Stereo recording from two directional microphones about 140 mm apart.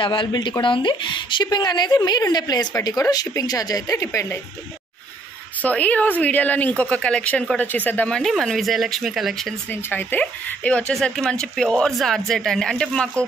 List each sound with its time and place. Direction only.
0.0 s a woman's voice: 35° left (ahead or behind); by 4.4 s 20° left (ahead or behind)
5.6 s a woman's voice: 10° left (ahead or behind)
9.7 s speech: 15° left (ahead or behind)